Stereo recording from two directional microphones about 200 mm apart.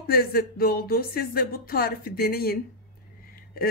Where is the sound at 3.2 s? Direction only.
45° left (ahead or behind).